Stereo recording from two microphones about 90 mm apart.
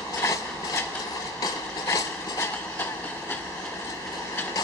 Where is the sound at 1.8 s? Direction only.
30° left (ahead or behind).